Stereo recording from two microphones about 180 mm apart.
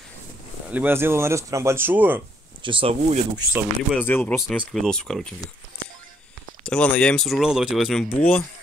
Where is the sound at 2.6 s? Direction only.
30° right (ahead or behind).